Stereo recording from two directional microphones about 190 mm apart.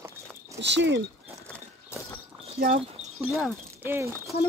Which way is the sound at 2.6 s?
50° right (ahead or behind).